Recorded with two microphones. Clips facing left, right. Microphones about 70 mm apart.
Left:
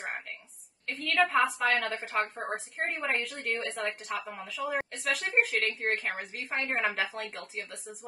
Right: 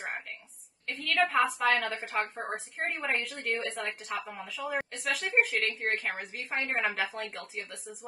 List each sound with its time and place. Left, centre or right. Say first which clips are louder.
0.8 s a woman's voice: left 1 dB; centre